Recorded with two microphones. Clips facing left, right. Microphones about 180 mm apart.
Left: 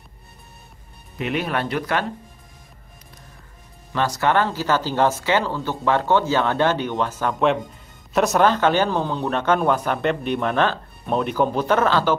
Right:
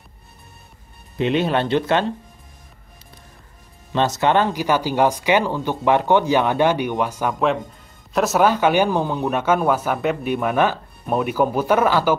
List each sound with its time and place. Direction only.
1.1 s speech: 25° right (ahead or behind)
3.9 s speech: 20° right (ahead or behind)